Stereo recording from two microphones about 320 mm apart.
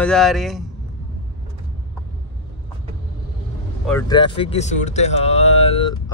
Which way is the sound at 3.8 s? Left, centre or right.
Centre.